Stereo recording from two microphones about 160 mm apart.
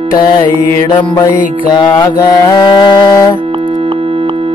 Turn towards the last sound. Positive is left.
turn(degrees=25)  # may be behind; listen again after turning